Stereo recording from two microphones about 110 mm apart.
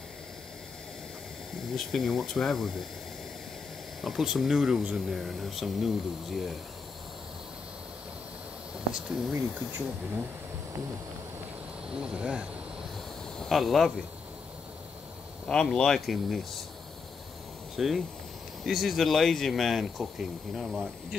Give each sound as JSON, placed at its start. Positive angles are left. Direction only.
{"t": 1.9, "sound": "speech", "side_deg": 5}
{"t": 4.0, "sound": "speech", "side_deg": 0}
{"t": 8.9, "sound": "speech", "side_deg": -5}
{"t": 9.3, "sound": "speech", "side_deg": -20}
{"t": 11.9, "sound": "speech", "side_deg": -10}
{"t": 15.4, "sound": "speech", "side_deg": 5}
{"t": 17.7, "sound": "speech", "side_deg": 0}